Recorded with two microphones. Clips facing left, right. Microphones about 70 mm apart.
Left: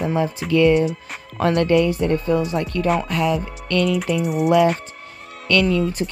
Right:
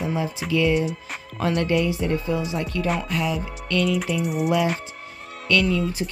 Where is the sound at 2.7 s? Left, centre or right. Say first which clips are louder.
Left 5 dB; left.